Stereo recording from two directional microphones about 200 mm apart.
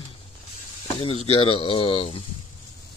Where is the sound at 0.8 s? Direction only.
30° left (ahead or behind).